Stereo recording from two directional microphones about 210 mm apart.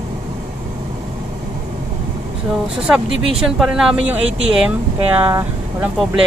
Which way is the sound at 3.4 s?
Centre (ahead or behind).